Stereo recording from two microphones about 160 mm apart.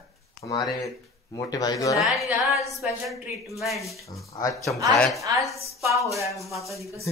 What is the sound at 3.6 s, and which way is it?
Speech, centre (ahead or behind).